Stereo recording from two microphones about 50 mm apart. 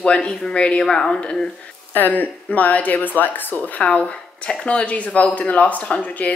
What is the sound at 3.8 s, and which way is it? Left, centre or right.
Speech, centre.